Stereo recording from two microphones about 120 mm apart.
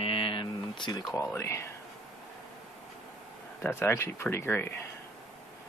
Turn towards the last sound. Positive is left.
turn(degrees=20)  # may be behind; listen again after turning